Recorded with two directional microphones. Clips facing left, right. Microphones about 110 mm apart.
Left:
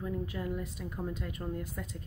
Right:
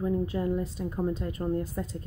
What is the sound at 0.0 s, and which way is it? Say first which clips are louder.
Speech: right 8 dB; 30° right (ahead or behind).